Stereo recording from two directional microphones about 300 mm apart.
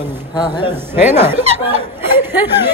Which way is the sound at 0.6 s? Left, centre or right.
Centre.